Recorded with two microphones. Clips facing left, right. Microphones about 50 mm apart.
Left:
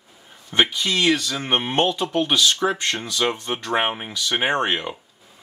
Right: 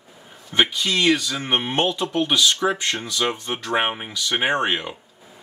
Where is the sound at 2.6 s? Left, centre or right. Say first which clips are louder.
Even; centre.